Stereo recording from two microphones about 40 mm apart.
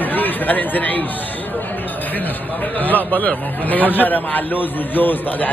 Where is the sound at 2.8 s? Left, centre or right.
Left.